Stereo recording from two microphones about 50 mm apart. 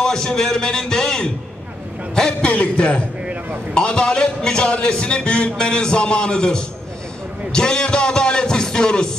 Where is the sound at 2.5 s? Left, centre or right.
Left.